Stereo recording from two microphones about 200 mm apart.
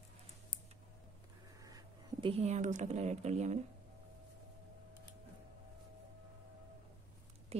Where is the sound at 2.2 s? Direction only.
30° right (ahead or behind).